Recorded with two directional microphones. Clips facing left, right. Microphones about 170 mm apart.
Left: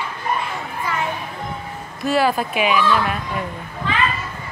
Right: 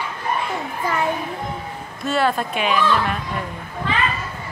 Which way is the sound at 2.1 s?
5° left (ahead or behind).